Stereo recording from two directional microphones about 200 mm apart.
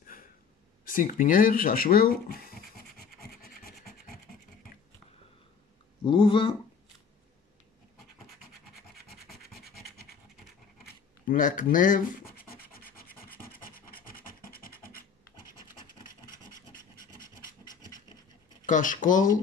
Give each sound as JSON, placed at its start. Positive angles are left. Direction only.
{"t": 0.0, "sound": "a sound", "side_deg": 45}
{"t": 6.0, "sound": "speech", "side_deg": 25}
{"t": 8.9, "sound": "rub", "side_deg": 50}
{"t": 11.2, "sound": "rub", "side_deg": 40}
{"t": 16.0, "sound": "rub", "side_deg": 45}
{"t": 17.6, "sound": "filing", "side_deg": 20}
{"t": 18.7, "sound": "speech", "side_deg": 40}